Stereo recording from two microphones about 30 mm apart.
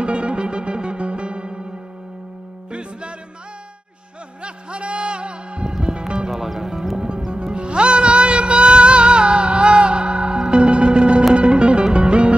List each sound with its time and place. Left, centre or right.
0.0 s music: right
2.7 s music: right
4.4 s music: right
6.3 s music: centre
7.3 s music: right